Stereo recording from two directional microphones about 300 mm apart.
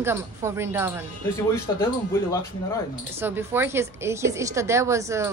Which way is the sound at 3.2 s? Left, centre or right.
Centre.